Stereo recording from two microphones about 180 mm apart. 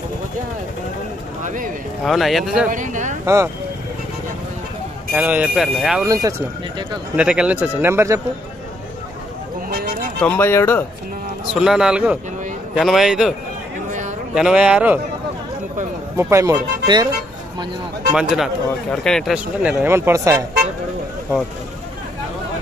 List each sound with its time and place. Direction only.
1.4 s speech: 45° right (ahead or behind)
2.0 s speech: centre (ahead or behind)
2.7 s speech: 45° right (ahead or behind)
5.1 s speech: 10° right (ahead or behind)
6.0 s speech: 20° right (ahead or behind)
7.2 s speech: 5° right (ahead or behind)
9.7 s a sound: 55° right (ahead or behind)
10.2 s speech: 10° left (ahead or behind)
11.5 s speech: centre (ahead or behind)
14.3 s speech: 5° right (ahead or behind)
16.2 s speech: 15° right (ahead or behind)
18.1 s speech: centre (ahead or behind)